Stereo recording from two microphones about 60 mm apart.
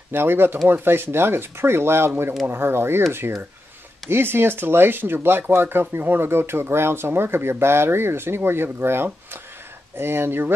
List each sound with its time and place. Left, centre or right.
0.1 s speech: right